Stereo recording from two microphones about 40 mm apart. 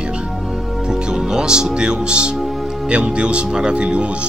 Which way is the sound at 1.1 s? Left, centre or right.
Centre.